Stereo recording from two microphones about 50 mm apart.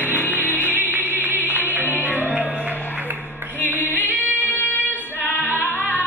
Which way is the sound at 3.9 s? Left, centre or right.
Left.